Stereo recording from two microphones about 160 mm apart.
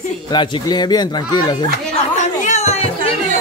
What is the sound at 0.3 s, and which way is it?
Speech, 30° left (ahead or behind).